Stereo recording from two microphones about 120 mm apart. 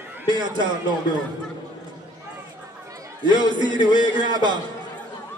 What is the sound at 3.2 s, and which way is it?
A man's voice, 40° right (ahead or behind).